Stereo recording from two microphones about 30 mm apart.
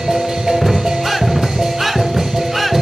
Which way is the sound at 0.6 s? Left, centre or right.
Centre.